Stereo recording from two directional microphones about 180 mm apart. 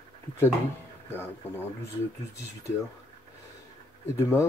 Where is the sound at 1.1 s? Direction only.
10° left (ahead or behind).